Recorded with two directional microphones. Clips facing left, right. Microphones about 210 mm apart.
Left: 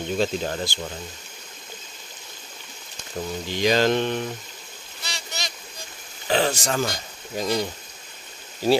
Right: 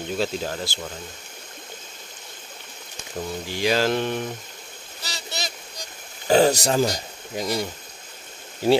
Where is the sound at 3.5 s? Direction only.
5° right (ahead or behind).